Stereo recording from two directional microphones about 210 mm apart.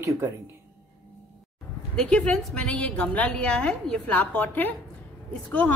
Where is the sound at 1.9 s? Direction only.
5° left (ahead or behind).